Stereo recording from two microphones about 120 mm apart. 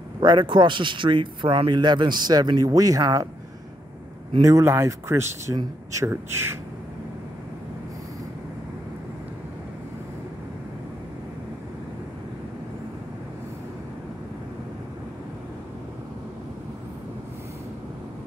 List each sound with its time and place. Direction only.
0.2 s a man's voice: 40° right (ahead or behind)
4.4 s speech: 25° right (ahead or behind)